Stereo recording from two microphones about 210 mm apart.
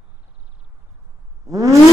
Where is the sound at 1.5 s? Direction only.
15° right (ahead or behind).